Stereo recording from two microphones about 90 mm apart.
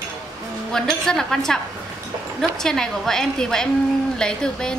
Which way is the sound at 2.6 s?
5° left (ahead or behind).